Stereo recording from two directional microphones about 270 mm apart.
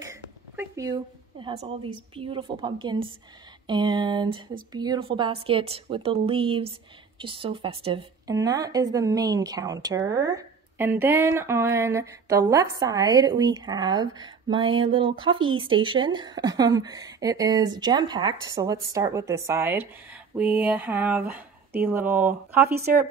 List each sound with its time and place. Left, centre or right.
0.0 s a woman's voice: centre